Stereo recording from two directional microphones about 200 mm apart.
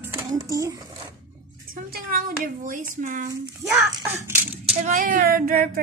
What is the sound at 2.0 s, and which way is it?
Speech, 45° right (ahead or behind).